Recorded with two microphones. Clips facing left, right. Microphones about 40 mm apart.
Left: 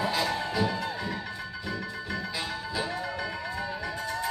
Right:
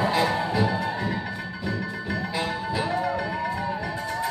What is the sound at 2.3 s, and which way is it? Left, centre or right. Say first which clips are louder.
Music: right 5 dB; right.